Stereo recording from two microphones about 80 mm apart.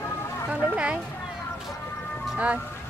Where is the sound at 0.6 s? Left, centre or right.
Centre.